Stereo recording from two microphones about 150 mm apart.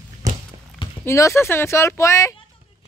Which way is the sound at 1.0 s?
20° left (ahead or behind).